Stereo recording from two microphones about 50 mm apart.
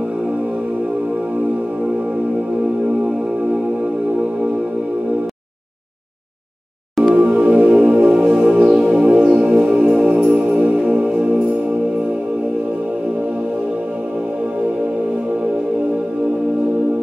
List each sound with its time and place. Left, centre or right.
7.0 s music: centre
7.3 s music: right